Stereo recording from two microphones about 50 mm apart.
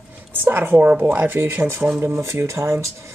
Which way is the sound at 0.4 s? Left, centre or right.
Right.